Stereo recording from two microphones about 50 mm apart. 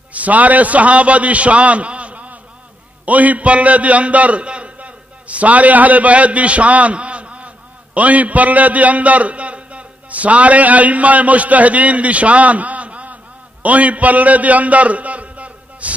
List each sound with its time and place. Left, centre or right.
0.1 s a man's voice: right